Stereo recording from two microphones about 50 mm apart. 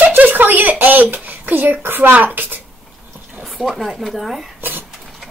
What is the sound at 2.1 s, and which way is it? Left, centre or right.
Speech, right.